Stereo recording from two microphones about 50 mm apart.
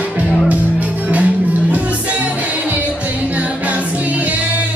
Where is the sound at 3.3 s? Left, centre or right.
Right.